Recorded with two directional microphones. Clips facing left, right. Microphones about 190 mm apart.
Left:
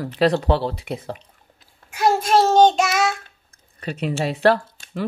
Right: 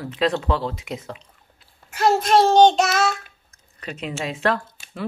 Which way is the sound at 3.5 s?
30° left (ahead or behind).